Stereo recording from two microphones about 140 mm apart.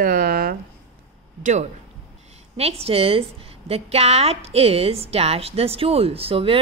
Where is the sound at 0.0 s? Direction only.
90° right.